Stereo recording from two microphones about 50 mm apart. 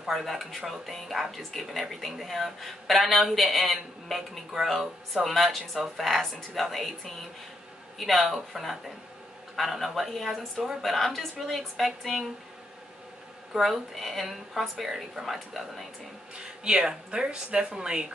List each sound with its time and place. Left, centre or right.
0.1 s speech: centre
13.5 s speech: centre